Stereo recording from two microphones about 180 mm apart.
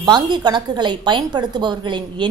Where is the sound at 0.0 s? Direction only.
25° right (ahead or behind).